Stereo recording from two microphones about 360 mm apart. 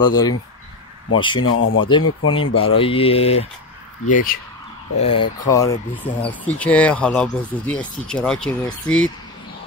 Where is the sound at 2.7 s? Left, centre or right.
Centre.